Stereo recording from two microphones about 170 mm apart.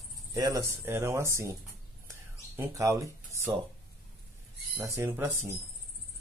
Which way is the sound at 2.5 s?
15° right (ahead or behind).